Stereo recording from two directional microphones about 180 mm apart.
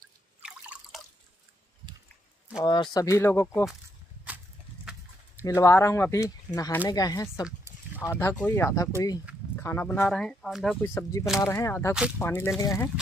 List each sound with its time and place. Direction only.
0.4 s drip: 5° right (ahead or behind)
2.6 s speech: 25° left (ahead or behind)
5.4 s speech: 15° left (ahead or behind)
11.0 s speech: 20° left (ahead or behind)